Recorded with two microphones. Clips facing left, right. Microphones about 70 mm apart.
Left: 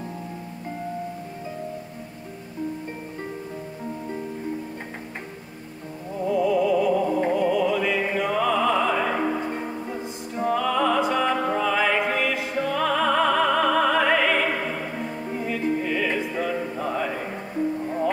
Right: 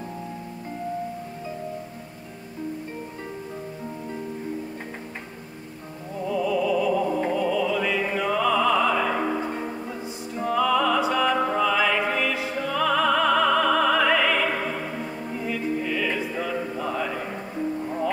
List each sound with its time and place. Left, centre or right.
6.2 s music: left
8.0 s music: left
12.5 s opera: left
16.3 s music: left